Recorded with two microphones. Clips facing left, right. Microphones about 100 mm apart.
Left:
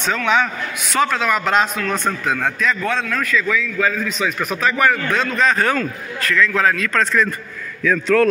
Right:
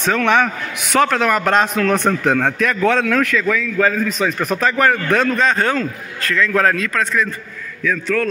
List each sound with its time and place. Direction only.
0.1 s a man's voice: 55° right (ahead or behind)
1.8 s a man's voice: 60° right (ahead or behind)
3.4 s a man's voice: 50° right (ahead or behind)
5.4 s a man's voice: 30° right (ahead or behind)
6.9 s a man's voice: 5° right (ahead or behind)